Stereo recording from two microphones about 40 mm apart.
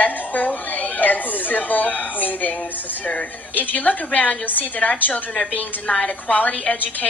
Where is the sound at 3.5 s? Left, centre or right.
Left.